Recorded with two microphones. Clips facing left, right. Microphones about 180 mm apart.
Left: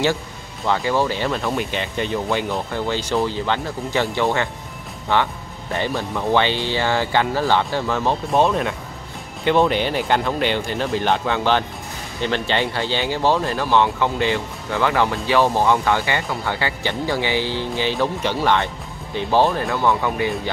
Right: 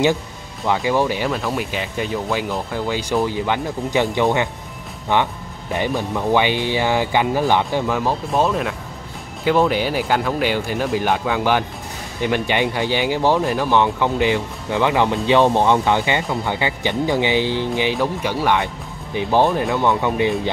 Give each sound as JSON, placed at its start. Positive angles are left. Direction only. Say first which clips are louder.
{"t": 0.7, "sound": "speech", "louder": "right 1 dB", "side_deg": -15}